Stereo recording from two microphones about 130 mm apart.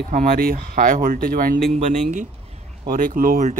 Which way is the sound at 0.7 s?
90° right.